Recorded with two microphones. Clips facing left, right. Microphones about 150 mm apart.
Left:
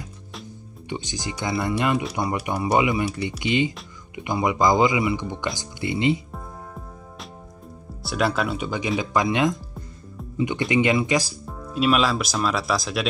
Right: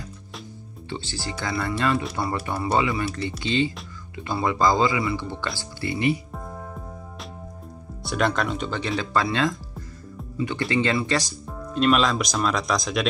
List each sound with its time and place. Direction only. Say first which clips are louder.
0.8 s speech: left 2 dB; 15° left (ahead or behind)
8.0 s speech: even; 5° left (ahead or behind)